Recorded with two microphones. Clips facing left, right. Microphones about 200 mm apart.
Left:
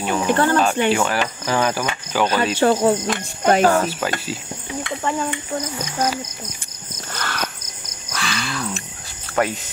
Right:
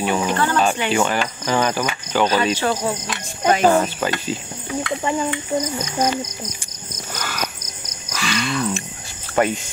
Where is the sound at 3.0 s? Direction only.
45° left (ahead or behind).